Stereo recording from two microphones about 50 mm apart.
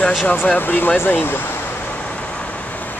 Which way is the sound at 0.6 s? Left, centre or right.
Left.